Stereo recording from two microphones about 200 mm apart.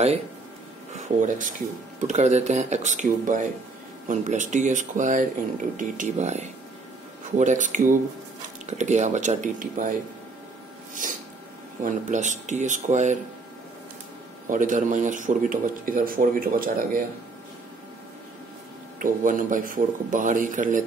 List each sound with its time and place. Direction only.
0.9 s a man's voice: 40° right (ahead or behind)
11.0 s a sound: 40° right (ahead or behind)
11.8 s a man's voice: 40° right (ahead or behind)
14.5 s speech: 40° right (ahead or behind)
18.9 s a man's voice: 40° right (ahead or behind)